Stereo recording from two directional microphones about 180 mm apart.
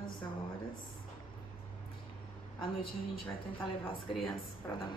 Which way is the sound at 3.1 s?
30° left (ahead or behind).